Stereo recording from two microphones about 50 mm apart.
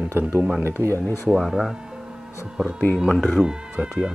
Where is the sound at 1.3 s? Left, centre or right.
Centre.